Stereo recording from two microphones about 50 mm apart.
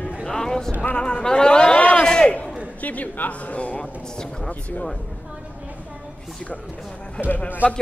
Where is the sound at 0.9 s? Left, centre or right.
Left.